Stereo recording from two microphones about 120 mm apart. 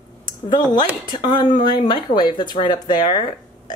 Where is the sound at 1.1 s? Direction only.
35° left (ahead or behind).